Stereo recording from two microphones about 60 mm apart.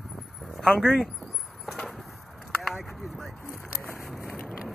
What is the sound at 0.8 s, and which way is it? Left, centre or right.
Speech, centre.